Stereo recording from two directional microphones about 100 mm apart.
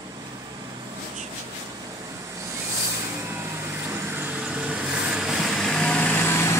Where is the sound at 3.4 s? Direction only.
20° right (ahead or behind).